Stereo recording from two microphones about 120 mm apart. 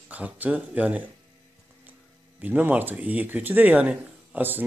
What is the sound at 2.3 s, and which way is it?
Speech, 15° right (ahead or behind).